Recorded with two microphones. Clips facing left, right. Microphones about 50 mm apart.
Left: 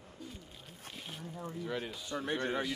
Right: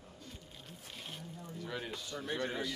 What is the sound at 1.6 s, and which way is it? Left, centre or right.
Speech, centre.